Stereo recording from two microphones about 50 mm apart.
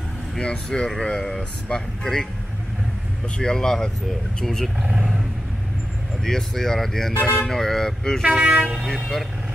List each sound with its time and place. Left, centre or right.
0.4 s speech: centre
3.3 s speech: centre
4.9 s roaring cats: centre
6.2 s speech: centre
8.3 s train: right
8.9 s speech: centre